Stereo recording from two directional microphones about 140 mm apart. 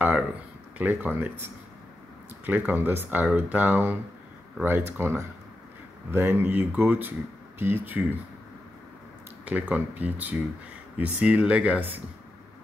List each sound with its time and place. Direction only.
0.7 s speech: 10° right (ahead or behind)
2.4 s speech: 15° right (ahead or behind)
9.4 s speech: 10° right (ahead or behind)